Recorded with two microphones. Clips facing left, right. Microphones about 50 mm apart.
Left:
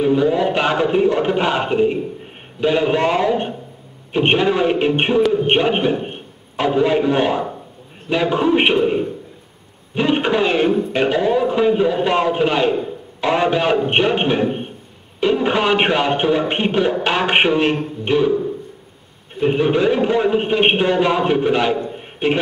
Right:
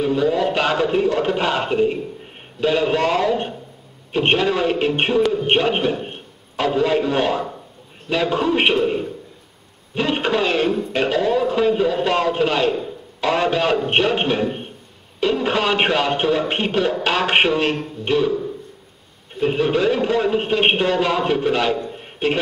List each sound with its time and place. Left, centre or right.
0.0 s a man's voice: centre